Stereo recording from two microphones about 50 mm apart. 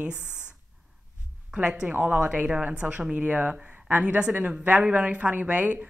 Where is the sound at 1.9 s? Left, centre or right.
Right.